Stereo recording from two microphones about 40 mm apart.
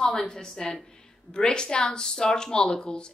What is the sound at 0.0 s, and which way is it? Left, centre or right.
A woman's voice, centre.